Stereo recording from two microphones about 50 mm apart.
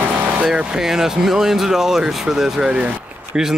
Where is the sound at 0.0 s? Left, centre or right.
Right.